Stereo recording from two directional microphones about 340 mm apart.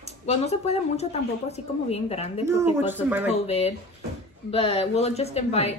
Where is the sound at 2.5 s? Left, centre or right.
Centre.